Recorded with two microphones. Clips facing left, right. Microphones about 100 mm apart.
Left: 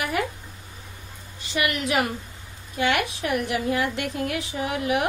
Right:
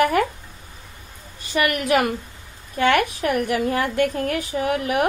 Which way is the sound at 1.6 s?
50° right (ahead or behind).